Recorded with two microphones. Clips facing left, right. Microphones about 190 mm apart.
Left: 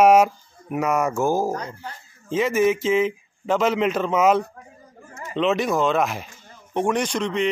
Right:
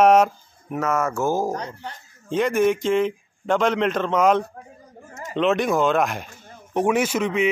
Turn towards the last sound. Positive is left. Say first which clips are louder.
# right 2 dB
turn(degrees=-5)  # may be behind; listen again after turning